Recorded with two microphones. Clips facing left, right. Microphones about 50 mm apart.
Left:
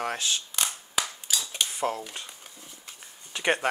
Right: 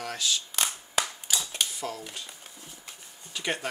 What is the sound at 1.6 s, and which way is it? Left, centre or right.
Cutlery, left.